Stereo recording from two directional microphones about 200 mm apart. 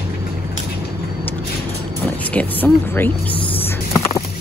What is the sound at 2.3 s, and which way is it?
Speech, 10° left (ahead or behind).